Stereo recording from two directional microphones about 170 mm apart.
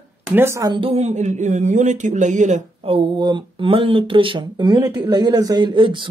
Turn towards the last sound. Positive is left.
turn(degrees=-30)  # may be behind; listen again after turning